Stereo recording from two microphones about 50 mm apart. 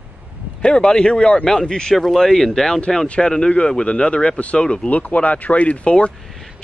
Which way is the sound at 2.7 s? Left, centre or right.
Left.